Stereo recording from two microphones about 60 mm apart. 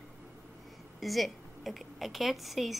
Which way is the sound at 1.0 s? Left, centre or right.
Centre.